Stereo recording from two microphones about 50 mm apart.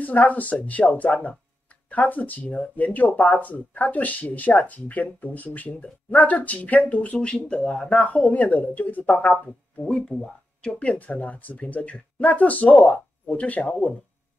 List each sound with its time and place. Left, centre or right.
0.0 s speech: left
10.0 s speech: centre; by 13.7 s left